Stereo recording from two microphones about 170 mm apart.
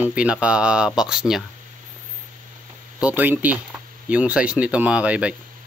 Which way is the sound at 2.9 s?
10° right (ahead or behind).